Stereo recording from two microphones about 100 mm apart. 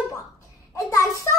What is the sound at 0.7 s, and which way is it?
Speech, 35° left (ahead or behind).